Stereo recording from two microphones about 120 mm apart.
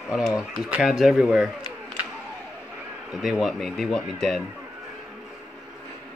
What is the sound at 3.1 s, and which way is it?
Speech, centre (ahead or behind).